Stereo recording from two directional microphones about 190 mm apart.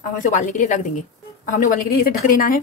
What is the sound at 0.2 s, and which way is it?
A woman's voice, 40° left (ahead or behind).